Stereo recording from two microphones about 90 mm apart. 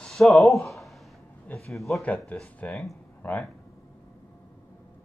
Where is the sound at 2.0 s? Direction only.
15° left (ahead or behind).